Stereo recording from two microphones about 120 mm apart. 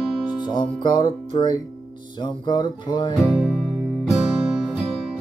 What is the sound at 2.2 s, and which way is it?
Music, 40° left (ahead or behind).